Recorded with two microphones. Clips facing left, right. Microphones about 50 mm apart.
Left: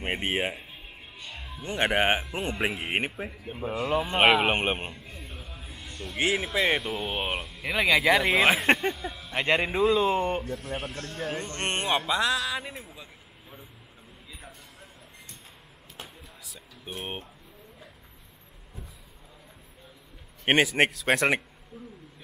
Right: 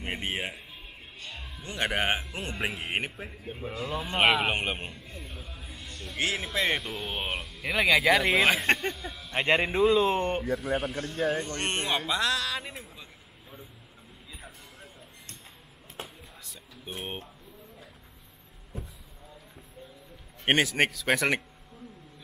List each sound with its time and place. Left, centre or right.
0.0 s speech: left
1.2 s music: centre
1.5 s speech: left
2.5 s speech: centre
3.3 s speech: centre
4.0 s speech: left
5.1 s music: centre
6.1 s speech: left
6.4 s speech: centre
7.6 s speech: centre
9.6 s speech: centre
11.4 s speech: left; by 13.7 s centre
16.4 s music: centre
20.4 s a man's voice: centre